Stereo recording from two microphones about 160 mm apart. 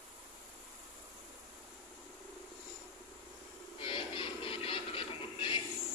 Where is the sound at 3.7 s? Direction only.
35° left (ahead or behind).